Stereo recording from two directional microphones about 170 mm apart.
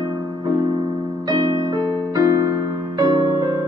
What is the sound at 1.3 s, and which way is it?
Music, 25° right (ahead or behind).